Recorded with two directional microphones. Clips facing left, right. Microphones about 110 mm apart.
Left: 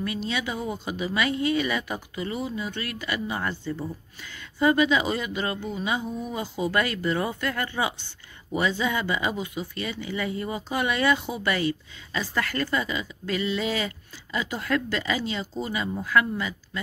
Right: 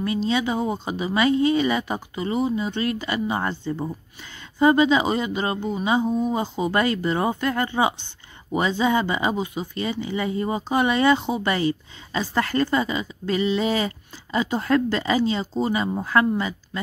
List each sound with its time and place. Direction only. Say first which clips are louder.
0.0 s speech: right 6 dB; 30° right (ahead or behind)